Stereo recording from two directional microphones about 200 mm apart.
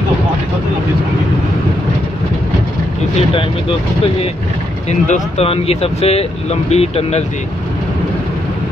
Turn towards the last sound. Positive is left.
turn(degrees=30)  # may be behind; listen again after turning